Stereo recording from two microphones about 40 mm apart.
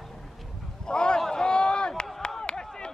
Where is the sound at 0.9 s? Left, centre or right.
Left.